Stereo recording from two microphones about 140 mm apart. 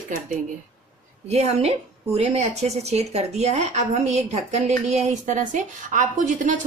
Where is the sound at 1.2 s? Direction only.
50° right (ahead or behind).